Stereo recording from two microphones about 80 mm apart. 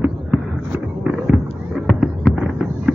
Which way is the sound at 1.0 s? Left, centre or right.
Centre.